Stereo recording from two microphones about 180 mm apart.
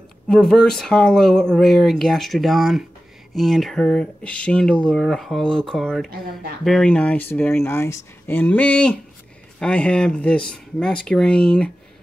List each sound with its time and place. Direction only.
0.3 s speech: 5° left (ahead or behind)
6.0 s speech: 55° right (ahead or behind)
6.6 s speech: 5° left (ahead or behind)